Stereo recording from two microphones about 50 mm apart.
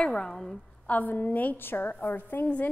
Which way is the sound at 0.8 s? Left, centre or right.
Left.